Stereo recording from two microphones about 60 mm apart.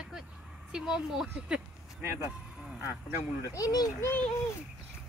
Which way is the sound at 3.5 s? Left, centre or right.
Left.